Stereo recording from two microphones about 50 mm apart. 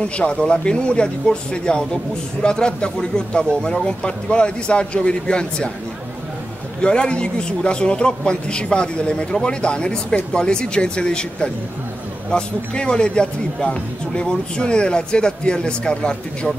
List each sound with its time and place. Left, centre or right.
0.0 s a man's voice: left
6.8 s a man's voice: centre